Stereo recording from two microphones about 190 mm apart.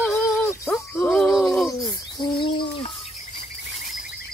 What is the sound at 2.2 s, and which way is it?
Bird, 25° left (ahead or behind).